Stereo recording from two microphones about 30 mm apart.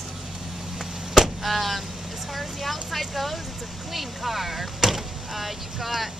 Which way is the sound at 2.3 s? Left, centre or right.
Centre.